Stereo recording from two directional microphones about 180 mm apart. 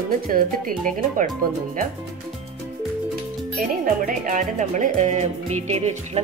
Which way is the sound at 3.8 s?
45° right (ahead or behind).